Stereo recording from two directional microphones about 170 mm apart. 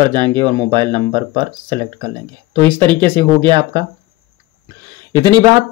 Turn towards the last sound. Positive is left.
turn(degrees=-25)  # may be behind; listen again after turning